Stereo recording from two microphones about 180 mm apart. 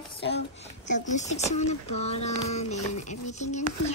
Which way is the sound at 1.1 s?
40° left (ahead or behind).